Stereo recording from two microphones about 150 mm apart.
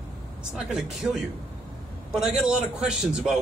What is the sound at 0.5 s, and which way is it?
Speech, 5° right (ahead or behind).